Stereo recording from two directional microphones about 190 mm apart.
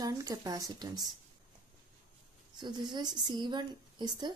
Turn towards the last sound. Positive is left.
turn(degrees=-25)  # may be behind; listen again after turning